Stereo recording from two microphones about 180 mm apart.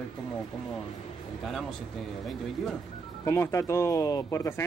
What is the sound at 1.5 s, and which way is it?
Speech, centre (ahead or behind).